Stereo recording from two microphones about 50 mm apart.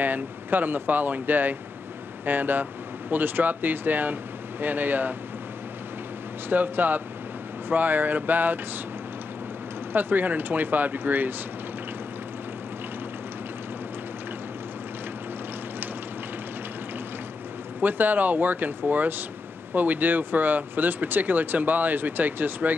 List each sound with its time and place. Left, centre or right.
0.0 s speech: right
6.5 s speech: right
9.9 s speech: right
17.7 s speech: right